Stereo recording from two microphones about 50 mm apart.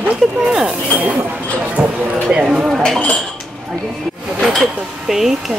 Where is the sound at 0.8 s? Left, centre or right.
Right.